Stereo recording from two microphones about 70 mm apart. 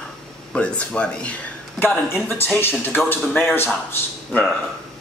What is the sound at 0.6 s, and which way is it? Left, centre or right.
Speech, centre.